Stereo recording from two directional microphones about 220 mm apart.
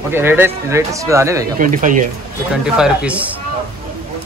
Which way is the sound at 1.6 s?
35° right (ahead or behind).